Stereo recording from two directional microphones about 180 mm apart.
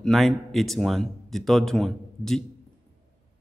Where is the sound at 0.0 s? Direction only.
Centre (ahead or behind).